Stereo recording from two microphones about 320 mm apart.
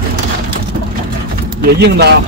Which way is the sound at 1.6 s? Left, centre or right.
Right.